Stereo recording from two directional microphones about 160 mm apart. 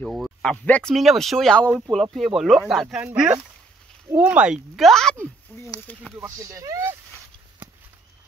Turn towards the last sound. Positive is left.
turn(degrees=-20)  # may be behind; listen again after turning